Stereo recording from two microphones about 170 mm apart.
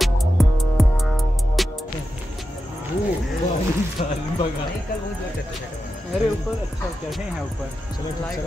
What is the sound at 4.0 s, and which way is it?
Speech, 45° left (ahead or behind).